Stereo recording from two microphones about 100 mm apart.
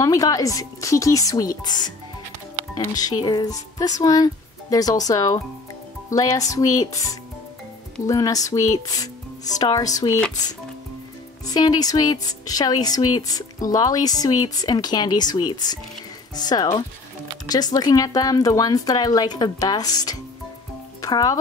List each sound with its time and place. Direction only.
0.0 s a woman's voice: 35° left (ahead or behind)
2.9 s a woman's voice: 40° left (ahead or behind)
11.4 s a woman's voice: 40° left (ahead or behind)